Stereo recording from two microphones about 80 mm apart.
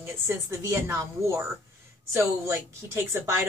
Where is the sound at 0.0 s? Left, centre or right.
Right.